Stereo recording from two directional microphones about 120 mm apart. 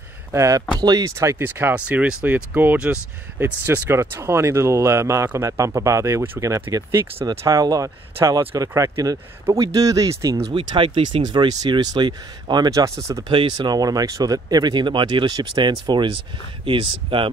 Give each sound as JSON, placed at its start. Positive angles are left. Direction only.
{"t": 0.3, "sound": "speech", "side_deg": -25}
{"t": 10.5, "sound": "speech", "side_deg": -40}